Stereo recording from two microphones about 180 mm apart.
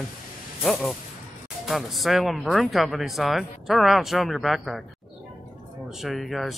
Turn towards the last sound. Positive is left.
turn(degrees=0)  # may be behind; listen again after turning